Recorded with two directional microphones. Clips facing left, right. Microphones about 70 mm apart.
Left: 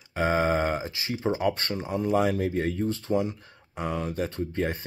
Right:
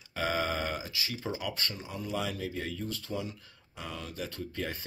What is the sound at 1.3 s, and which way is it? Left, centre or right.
Speech, left.